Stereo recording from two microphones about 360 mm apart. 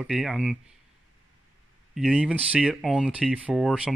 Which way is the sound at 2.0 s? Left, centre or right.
Centre.